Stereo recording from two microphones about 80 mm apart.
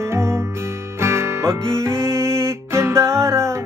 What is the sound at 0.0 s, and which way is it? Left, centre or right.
Music, right.